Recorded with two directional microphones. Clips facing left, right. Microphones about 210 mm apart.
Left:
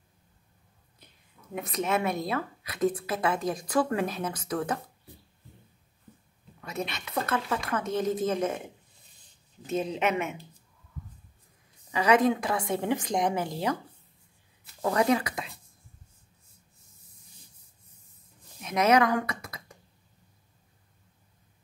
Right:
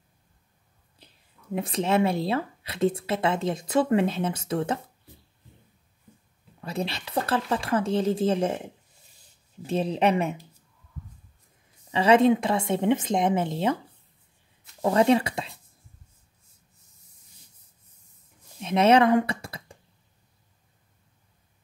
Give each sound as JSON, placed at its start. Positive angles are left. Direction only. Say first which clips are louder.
{"t": 0.9, "sound": "speech", "louder": "right 1 dB", "side_deg": -30}
{"t": 6.6, "sound": "speech", "louder": "right 4 dB", "side_deg": -30}
{"t": 9.7, "sound": "speech", "louder": "right 4 dB", "side_deg": -30}
{"t": 11.9, "sound": "speech", "louder": "right 4 dB", "side_deg": -30}
{"t": 14.8, "sound": "speech", "louder": "right 4 dB", "side_deg": -25}
{"t": 18.6, "sound": "a sound", "louder": "right 4 dB", "side_deg": -30}